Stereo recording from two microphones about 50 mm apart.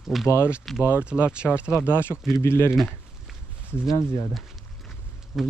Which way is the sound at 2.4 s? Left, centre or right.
Left.